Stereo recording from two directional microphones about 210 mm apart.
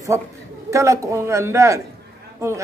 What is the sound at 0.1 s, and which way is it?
A man's voice, 15° right (ahead or behind).